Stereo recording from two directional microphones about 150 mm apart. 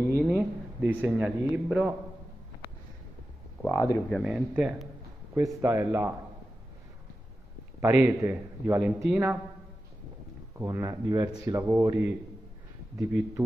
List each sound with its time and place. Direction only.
0.4 s a man's voice: 10° right (ahead or behind)
3.6 s speech: 20° left (ahead or behind)
4.2 s speech: 5° right (ahead or behind)
5.3 s a man's voice: 15° right (ahead or behind)
7.8 s a man's voice: 15° right (ahead or behind)
10.6 s a man's voice: 20° right (ahead or behind)